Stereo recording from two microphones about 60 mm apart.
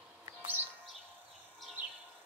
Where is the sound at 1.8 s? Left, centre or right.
Right.